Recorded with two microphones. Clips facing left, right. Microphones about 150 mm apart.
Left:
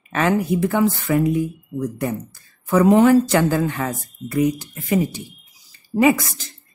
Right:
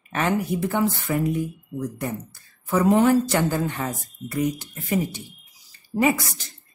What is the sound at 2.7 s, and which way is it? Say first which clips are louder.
A woman's voice: left 5 dB; 90° left.